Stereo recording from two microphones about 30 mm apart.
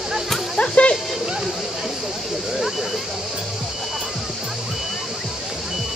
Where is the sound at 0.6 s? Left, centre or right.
Left.